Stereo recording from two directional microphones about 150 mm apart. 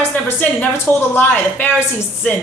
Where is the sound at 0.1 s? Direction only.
10° left (ahead or behind).